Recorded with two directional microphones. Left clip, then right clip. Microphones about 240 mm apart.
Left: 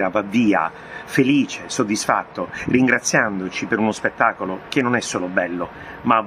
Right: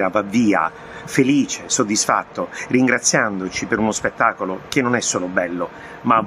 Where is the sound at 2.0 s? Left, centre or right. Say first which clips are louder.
Right 1 dB; centre.